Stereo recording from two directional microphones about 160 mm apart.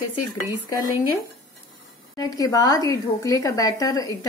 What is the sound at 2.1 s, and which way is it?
A woman's voice, 20° left (ahead or behind).